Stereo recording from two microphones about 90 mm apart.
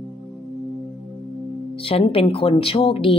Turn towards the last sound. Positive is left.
turn(degrees=85)